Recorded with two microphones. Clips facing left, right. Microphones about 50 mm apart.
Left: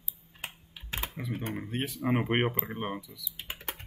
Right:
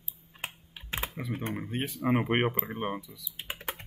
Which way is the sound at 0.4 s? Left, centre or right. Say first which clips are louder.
Right 2 dB; right.